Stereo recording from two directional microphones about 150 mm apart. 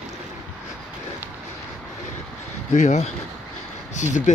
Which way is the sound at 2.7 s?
50° left (ahead or behind).